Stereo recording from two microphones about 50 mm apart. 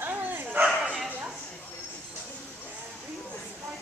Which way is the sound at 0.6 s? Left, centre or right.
Centre.